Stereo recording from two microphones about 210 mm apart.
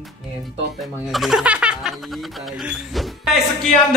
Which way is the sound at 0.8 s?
Centre (ahead or behind).